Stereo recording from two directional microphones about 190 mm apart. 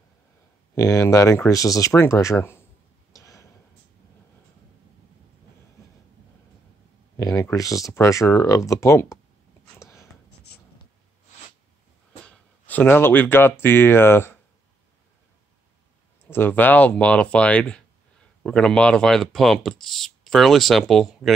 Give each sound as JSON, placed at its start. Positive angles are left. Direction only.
{"t": 0.7, "sound": "speech", "side_deg": 15}
{"t": 3.1, "sound": "a sound", "side_deg": 15}
{"t": 7.2, "sound": "speech", "side_deg": 15}
{"t": 9.8, "sound": "a sound", "side_deg": 15}
{"t": 12.3, "sound": "speech", "side_deg": 10}
{"t": 16.3, "sound": "speech", "side_deg": 10}